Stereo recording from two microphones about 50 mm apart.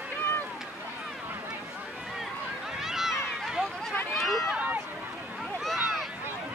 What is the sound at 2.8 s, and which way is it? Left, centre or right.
Run, centre.